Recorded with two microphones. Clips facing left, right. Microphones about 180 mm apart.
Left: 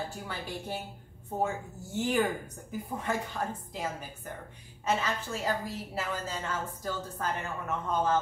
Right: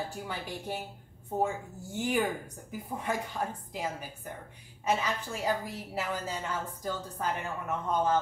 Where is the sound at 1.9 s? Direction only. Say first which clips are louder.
Left 1 dB; 10° right (ahead or behind).